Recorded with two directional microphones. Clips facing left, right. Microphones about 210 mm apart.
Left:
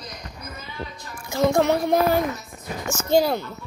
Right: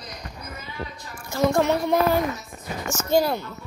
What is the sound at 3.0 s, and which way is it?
Speech, 15° left (ahead or behind).